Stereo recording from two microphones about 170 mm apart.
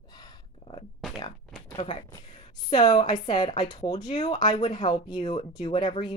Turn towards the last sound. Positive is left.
turn(degrees=30)  # may be behind; listen again after turning